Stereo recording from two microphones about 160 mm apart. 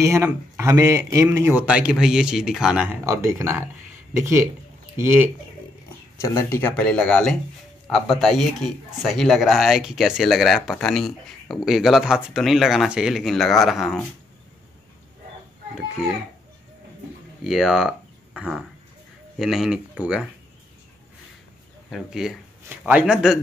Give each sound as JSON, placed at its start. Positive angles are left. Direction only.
{"t": 0.0, "sound": "speech", "side_deg": -15}
{"t": 3.1, "sound": "speech", "side_deg": -20}
{"t": 6.1, "sound": "speech", "side_deg": 20}
{"t": 6.7, "sound": "speech", "side_deg": 5}
{"t": 17.4, "sound": "a sound", "side_deg": 0}
{"t": 19.3, "sound": "speech", "side_deg": -5}
{"t": 21.9, "sound": "speech", "side_deg": -5}